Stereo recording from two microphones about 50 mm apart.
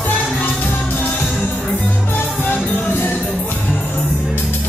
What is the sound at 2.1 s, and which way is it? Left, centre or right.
Music, left.